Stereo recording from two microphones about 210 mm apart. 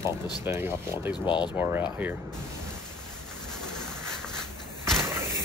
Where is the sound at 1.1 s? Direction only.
20° left (ahead or behind).